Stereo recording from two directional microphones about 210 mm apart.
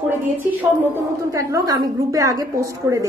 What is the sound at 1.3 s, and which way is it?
A woman's voice, 15° right (ahead or behind).